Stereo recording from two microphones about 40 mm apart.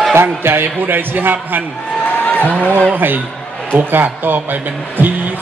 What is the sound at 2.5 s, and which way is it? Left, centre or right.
A man's voice, right.